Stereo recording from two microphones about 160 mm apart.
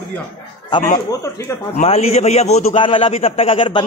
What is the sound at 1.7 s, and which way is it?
A man's voice, 40° left (ahead or behind).